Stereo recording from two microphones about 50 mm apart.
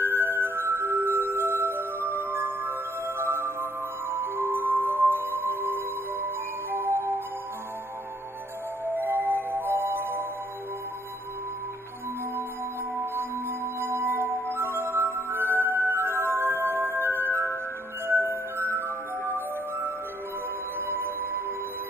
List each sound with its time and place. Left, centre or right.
0.0 s music: right
8.8 s music: right
13.0 s music: right
20.8 s music: right